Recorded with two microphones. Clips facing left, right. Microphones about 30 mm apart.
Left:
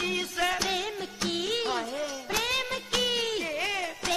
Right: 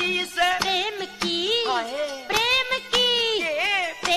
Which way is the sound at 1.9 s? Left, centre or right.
Right.